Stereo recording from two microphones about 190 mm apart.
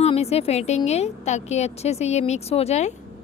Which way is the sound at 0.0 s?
35° left (ahead or behind).